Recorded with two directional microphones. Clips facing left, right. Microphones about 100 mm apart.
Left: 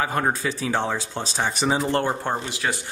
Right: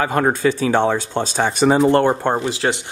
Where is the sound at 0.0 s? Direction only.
60° right (ahead or behind).